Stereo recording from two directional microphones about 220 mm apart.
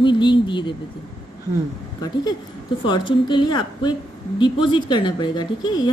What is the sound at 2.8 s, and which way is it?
A woman's voice, 20° left (ahead or behind).